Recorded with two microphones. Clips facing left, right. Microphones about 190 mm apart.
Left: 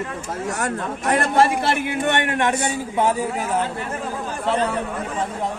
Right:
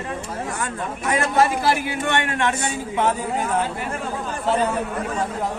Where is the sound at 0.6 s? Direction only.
65° left (ahead or behind).